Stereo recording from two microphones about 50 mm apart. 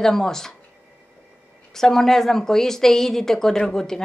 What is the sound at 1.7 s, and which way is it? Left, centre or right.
Speech, centre.